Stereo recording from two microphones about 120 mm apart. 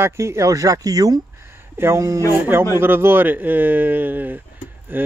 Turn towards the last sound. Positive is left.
turn(degrees=-15)  # may be behind; listen again after turning